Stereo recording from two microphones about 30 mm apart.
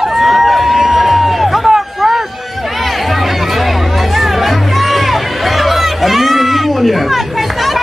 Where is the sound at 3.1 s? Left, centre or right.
Centre.